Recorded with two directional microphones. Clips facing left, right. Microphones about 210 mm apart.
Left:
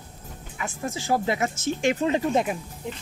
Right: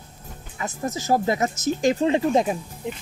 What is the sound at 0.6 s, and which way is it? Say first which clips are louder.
Speech: right 3 dB; 40° right (ahead or behind).